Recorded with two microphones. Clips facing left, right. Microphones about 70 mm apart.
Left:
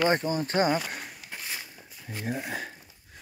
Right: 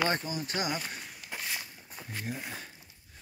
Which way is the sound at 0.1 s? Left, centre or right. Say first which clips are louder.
Left 7 dB; left.